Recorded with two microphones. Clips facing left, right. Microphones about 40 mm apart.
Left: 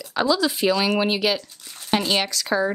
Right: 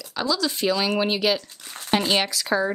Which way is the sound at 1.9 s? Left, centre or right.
Centre.